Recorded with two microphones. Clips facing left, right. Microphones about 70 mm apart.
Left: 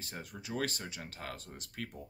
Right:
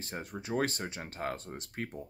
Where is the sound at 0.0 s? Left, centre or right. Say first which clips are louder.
Right 5 dB; right.